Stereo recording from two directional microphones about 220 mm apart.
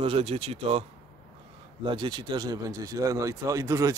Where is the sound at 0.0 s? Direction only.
25° right (ahead or behind).